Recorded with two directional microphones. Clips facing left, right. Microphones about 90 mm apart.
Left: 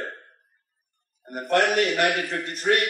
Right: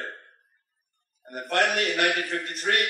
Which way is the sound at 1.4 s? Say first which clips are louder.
Left 4 dB; 40° left (ahead or behind).